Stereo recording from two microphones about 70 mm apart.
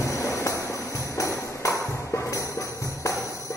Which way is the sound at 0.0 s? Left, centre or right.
Left.